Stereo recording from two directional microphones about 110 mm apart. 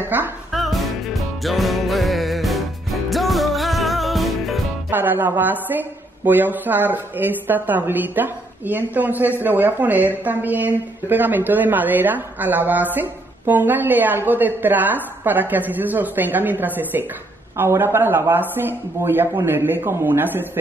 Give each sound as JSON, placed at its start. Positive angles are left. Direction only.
{"t": 0.1, "sound": "a woman's voice", "side_deg": -15}
{"t": 0.5, "sound": "music", "side_deg": 0}
{"t": 4.9, "sound": "a woman's voice", "side_deg": -15}